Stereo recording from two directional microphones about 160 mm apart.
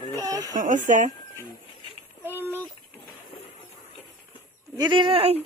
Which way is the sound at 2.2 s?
15° right (ahead or behind).